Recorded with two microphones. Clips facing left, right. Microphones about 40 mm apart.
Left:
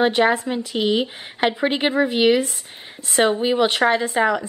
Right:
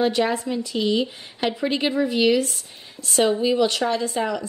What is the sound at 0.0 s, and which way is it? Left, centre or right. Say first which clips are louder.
A woman's voice: left 4 dB; left.